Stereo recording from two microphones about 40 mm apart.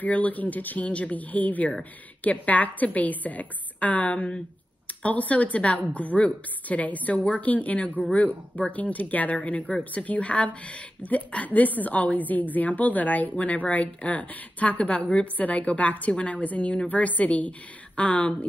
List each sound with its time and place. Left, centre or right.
0.0 s a woman's voice: left
0.8 s a woman's voice: left